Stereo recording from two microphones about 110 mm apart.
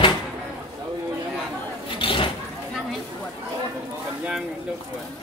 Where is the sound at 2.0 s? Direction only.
50° left (ahead or behind).